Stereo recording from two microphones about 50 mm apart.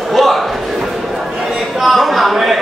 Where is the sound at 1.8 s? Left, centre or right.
Centre.